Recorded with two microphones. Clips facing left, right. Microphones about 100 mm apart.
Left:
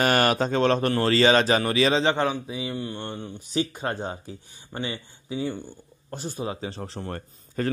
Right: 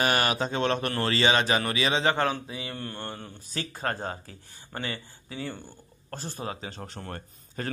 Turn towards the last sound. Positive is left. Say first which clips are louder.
# left 7 dB
turn(degrees=40)  # may be behind; listen again after turning